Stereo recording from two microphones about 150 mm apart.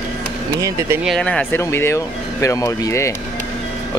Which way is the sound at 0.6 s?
20° right (ahead or behind).